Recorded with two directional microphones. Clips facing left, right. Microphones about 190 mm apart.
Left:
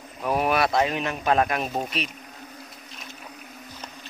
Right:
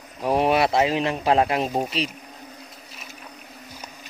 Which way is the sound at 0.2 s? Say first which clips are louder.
Right 3 dB; 30° right (ahead or behind).